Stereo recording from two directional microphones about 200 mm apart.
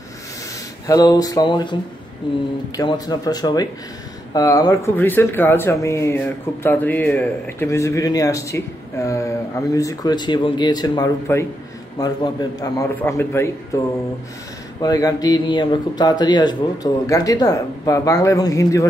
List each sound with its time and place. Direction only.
0.8 s speech: 20° left (ahead or behind)
2.8 s speech: 20° left (ahead or behind)